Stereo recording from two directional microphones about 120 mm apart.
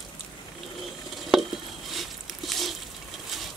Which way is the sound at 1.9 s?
Centre (ahead or behind).